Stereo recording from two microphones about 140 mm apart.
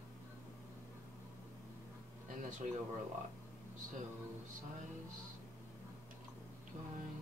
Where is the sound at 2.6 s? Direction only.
65° right (ahead or behind).